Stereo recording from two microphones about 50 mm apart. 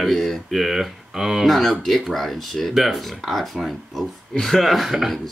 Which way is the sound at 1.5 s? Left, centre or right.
Centre.